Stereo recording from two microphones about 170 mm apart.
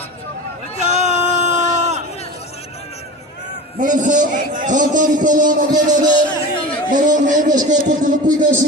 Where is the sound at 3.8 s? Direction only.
50° right (ahead or behind).